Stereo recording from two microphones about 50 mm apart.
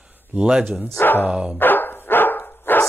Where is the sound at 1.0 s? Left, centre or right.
Left.